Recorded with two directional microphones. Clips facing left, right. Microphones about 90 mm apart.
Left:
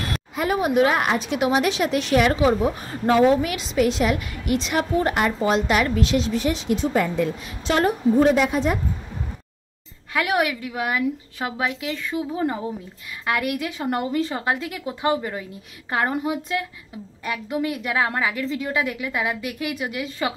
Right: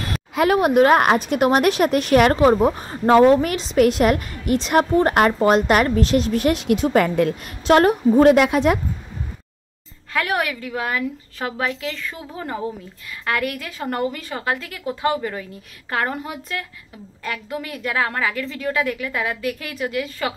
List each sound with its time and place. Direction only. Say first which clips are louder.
0.4 s a woman's voice: right 5 dB; 65° right (ahead or behind); by 5.1 s 40° right (ahead or behind)
5.1 s a woman's voice: right 5 dB; 55° right (ahead or behind); by 8.7 s 80° right
10.1 s a woman's voice: left 1 dB; 10° left (ahead or behind)